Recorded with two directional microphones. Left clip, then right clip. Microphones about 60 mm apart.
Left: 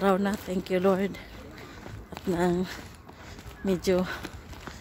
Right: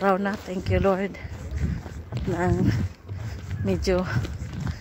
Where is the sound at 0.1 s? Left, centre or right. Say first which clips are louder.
Right 2 dB; left.